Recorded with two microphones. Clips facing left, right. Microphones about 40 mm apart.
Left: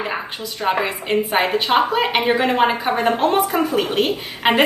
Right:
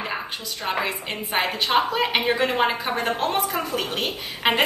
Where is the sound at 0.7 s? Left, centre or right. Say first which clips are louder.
Left 6 dB; centre.